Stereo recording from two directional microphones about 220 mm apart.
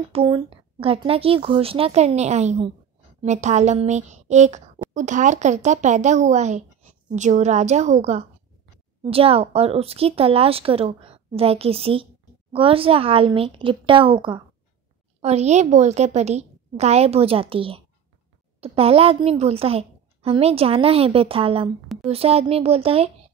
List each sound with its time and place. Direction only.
0.1 s speech: 25° right (ahead or behind)